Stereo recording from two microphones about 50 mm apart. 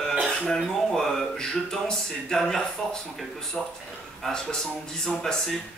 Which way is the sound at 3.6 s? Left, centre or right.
Centre.